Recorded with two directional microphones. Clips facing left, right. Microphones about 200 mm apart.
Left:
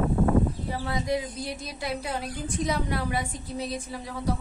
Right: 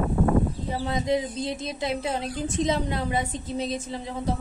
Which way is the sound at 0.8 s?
20° right (ahead or behind).